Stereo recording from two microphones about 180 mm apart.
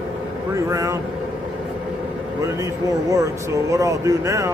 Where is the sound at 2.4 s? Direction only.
15° right (ahead or behind).